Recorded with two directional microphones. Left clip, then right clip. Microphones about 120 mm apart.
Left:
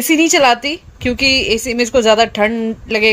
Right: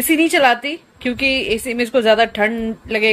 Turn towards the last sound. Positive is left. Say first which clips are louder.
# left 3 dB
turn(degrees=40)  # may be behind; listen again after turning